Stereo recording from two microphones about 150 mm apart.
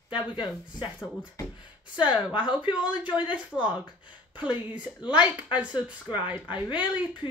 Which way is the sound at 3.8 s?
30° left (ahead or behind).